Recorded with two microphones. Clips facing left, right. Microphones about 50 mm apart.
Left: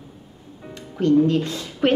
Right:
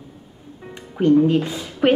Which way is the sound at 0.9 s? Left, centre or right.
Centre.